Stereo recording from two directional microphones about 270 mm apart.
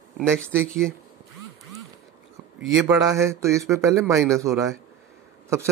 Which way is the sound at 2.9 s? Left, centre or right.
Centre.